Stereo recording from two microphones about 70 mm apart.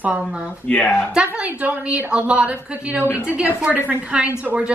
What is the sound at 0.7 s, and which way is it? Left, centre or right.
Speech, centre.